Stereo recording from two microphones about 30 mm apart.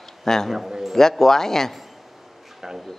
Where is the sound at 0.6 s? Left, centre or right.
Centre.